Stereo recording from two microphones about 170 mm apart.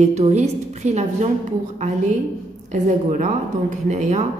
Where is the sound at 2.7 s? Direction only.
50° right (ahead or behind).